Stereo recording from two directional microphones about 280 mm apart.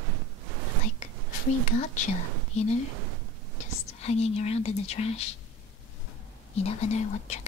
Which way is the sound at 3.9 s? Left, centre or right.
Left.